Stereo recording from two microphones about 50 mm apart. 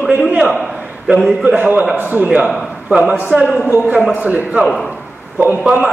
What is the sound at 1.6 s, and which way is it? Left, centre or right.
Speech, right.